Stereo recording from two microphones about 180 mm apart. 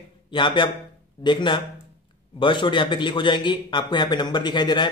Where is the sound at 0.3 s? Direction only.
25° left (ahead or behind).